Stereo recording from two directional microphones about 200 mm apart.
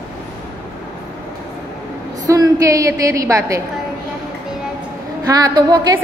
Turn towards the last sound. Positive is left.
turn(degrees=-20)  # may be behind; listen again after turning